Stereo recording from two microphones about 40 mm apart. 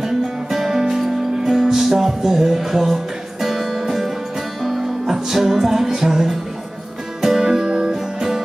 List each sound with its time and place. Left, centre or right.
0.0 s music: centre